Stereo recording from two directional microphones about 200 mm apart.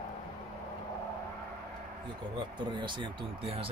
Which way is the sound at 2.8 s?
25° right (ahead or behind).